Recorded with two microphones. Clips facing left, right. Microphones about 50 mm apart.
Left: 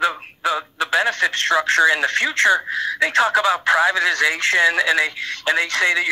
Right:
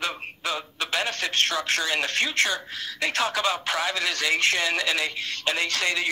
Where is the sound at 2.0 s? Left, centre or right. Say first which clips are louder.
Left 8 dB; left.